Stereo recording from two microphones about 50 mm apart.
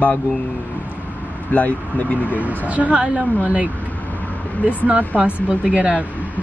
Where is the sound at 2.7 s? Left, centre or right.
Right.